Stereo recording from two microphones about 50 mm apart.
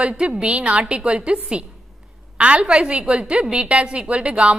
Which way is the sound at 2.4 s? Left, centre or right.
Right.